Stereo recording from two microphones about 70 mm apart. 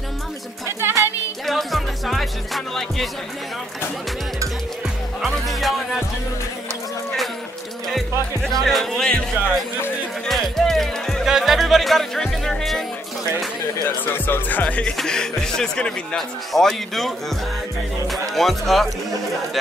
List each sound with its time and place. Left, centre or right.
0.7 s music: right
1.4 s music: centre
5.2 s speech: centre
8.5 s speech: centre
10.2 s music: centre
11.2 s speech: centre
13.8 s speech: left; by 17.1 s centre
18.3 s speech: centre